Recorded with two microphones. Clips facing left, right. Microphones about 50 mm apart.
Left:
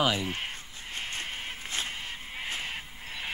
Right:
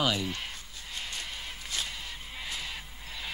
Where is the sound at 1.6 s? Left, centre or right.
Left.